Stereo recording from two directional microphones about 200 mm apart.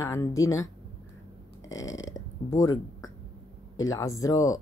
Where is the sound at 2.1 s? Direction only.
15° left (ahead or behind).